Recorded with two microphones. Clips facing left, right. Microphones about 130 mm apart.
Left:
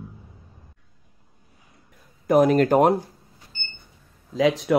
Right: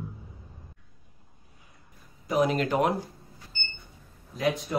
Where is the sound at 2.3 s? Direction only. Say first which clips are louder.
Left 8 dB; 45° left (ahead or behind).